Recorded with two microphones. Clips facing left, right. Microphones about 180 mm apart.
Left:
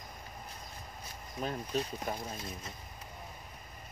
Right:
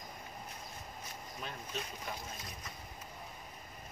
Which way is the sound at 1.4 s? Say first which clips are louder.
Left 9 dB; 40° left (ahead or behind).